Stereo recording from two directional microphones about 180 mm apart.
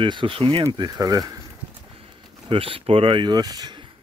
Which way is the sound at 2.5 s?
30° right (ahead or behind).